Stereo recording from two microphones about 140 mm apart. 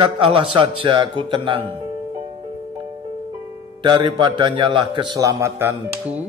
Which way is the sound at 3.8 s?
35° right (ahead or behind).